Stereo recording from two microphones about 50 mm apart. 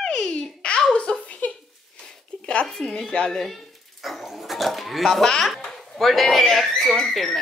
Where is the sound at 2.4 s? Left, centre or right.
Left.